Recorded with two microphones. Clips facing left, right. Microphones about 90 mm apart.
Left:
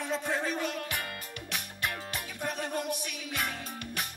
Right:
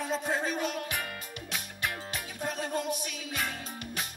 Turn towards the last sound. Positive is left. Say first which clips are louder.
# even
turn(degrees=-20)  # may be behind; listen again after turning